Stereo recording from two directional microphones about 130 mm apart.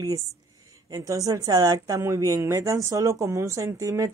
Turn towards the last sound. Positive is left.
turn(degrees=-25)  # may be behind; listen again after turning